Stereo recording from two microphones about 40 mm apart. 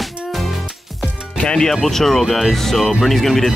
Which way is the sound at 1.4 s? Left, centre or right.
Left.